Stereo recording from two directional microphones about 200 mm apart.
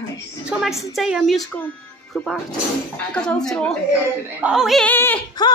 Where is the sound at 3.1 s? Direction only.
5° left (ahead or behind).